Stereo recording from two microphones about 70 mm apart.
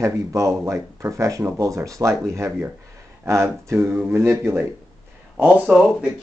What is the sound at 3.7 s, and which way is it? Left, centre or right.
Speech, right.